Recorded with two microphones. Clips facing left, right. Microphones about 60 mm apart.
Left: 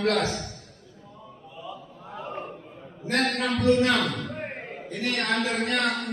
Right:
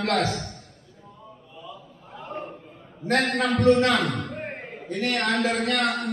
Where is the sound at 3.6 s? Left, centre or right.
Right.